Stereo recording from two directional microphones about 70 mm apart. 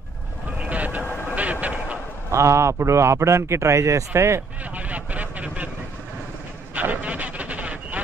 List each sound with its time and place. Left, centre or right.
0.6 s vehicle: right
2.3 s a man's voice: right
4.7 s vehicle: right
6.7 s a sound: right